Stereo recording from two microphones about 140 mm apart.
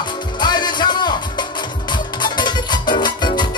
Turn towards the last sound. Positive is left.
turn(degrees=30)  # may be behind; listen again after turning